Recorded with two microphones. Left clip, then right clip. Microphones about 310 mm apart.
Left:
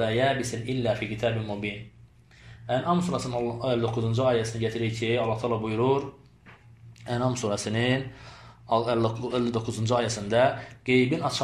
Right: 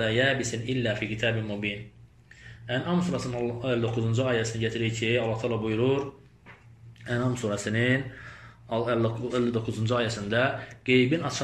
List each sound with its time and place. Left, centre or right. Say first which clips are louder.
0.0 s speech: even; centre
7.1 s speech: left 2 dB; centre